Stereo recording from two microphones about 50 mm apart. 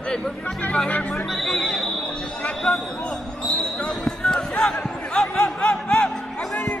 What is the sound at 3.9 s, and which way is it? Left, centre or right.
Speech, centre.